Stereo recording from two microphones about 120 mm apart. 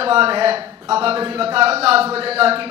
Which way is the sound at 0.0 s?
50° right (ahead or behind).